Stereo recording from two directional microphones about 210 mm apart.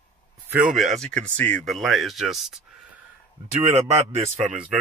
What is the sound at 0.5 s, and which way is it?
Speech, 5° right (ahead or behind).